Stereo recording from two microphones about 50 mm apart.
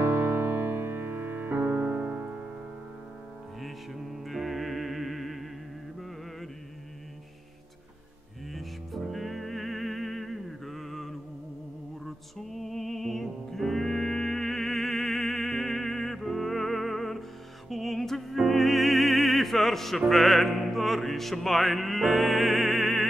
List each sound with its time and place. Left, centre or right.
0.0 s music: right
1.8 s music: right
4.3 s music: centre
8.5 s music: centre
12.4 s music: centre